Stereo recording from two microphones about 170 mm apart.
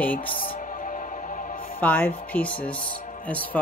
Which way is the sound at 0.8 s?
50° left (ahead or behind).